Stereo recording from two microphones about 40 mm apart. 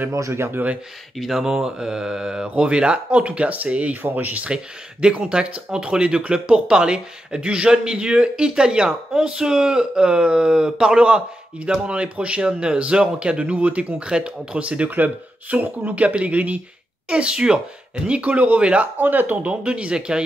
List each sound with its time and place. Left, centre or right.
0.3 s speech: right
1.1 s speech: centre
2.4 s speech: right
4.0 s speech: right
5.2 s speech: right
17.1 s speech: right
18.9 s speech: right
19.5 s speech: right